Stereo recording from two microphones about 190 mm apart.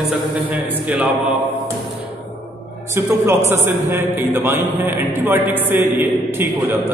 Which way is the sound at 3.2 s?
10° right (ahead or behind).